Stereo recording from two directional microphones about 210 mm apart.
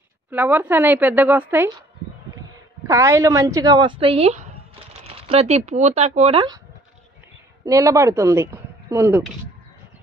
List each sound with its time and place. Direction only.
0.3 s a woman's voice: 10° right (ahead or behind)
2.9 s a woman's voice: 15° right (ahead or behind)
7.6 s speech: 15° right (ahead or behind)